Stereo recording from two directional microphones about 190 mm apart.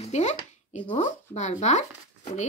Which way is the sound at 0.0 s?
35° left (ahead or behind).